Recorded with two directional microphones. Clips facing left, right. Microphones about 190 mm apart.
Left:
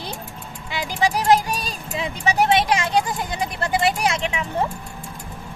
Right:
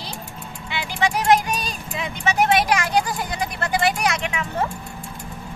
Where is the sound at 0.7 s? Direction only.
35° left (ahead or behind).